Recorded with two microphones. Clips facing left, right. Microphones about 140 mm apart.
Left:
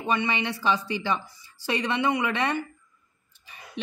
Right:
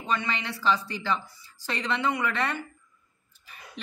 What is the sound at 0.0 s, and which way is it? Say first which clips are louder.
A woman's voice: left 4 dB; 15° left (ahead or behind).